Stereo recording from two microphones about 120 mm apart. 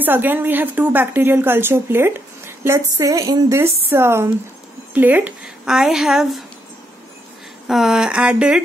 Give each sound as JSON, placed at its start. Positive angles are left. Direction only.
{"t": 0.0, "sound": "a woman's voice", "side_deg": -15}
{"t": 7.6, "sound": "a woman's voice", "side_deg": -5}